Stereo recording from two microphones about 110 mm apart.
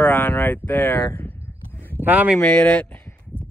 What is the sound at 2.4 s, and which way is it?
Speech, 15° left (ahead or behind).